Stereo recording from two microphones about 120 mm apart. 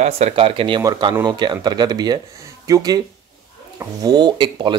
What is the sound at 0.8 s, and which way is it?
Speech, 35° right (ahead or behind).